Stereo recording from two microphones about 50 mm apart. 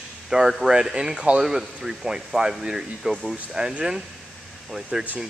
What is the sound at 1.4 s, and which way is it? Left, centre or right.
Speech, centre.